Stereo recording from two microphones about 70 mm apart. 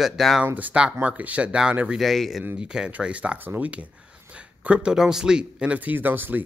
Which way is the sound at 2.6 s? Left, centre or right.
Centre.